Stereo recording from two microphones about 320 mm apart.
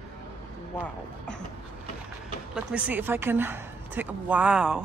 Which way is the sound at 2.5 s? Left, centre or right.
Centre.